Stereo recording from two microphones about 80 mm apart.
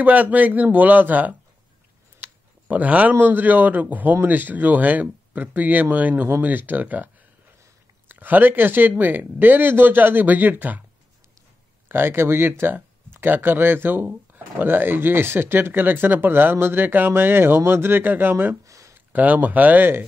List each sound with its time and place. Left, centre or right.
0.0 s speech: centre
2.7 s speech: centre
8.1 s speech: right
11.9 s speech: right
18.6 s a sound: right
18.9 s speech: centre